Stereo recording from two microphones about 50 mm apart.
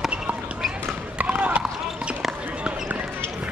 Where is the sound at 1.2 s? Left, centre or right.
Right.